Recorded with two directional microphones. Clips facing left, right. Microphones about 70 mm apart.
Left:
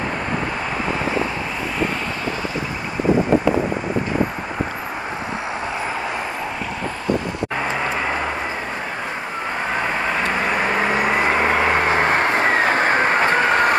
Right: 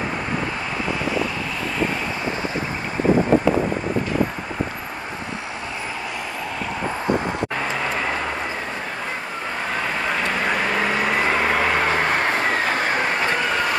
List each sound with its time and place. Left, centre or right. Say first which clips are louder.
9.8 s vehicle: left 2 dB; left